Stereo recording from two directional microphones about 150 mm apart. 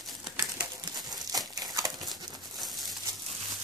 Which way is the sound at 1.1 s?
25° right (ahead or behind).